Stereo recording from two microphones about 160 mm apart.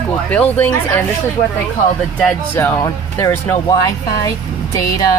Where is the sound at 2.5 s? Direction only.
15° left (ahead or behind).